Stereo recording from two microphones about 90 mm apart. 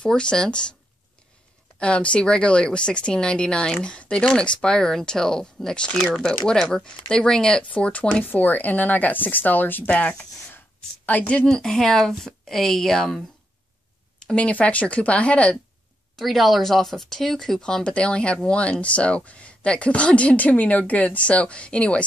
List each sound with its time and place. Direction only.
0.0 s speech: 10° left (ahead or behind)
1.8 s a woman's voice: 10° left (ahead or behind)
14.2 s speech: 15° left (ahead or behind)
16.2 s speech: centre (ahead or behind)